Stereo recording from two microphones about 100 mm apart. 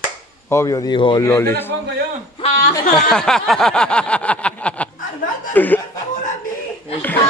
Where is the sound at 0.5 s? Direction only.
35° left (ahead or behind).